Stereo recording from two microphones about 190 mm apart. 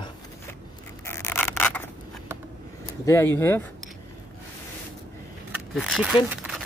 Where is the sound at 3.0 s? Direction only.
15° left (ahead or behind).